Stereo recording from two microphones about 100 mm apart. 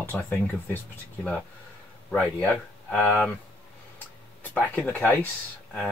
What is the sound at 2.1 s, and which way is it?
Speech, 10° left (ahead or behind).